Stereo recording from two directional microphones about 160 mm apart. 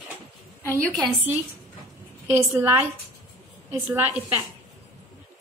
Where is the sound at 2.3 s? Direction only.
10° right (ahead or behind).